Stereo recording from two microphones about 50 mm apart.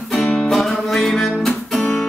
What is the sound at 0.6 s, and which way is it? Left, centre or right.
Music, centre.